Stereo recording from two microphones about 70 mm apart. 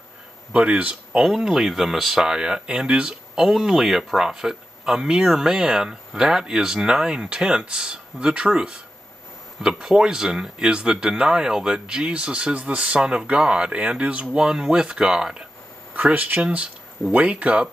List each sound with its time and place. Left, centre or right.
0.5 s speech: centre
1.2 s speech: centre
15.9 s speech: right